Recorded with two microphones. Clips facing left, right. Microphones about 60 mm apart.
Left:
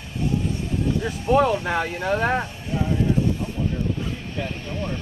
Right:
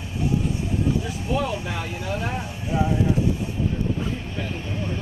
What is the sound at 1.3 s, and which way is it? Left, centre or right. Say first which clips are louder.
Speech: left 7 dB; left.